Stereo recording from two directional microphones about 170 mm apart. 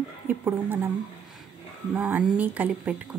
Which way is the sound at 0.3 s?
10° right (ahead or behind).